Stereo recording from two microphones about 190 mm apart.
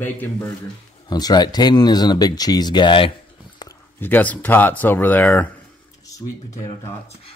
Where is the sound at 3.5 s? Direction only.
15° left (ahead or behind).